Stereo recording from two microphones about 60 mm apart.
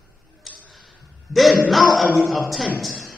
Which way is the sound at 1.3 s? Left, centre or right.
Centre.